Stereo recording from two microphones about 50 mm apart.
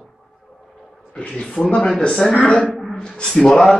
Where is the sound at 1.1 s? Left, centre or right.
Left.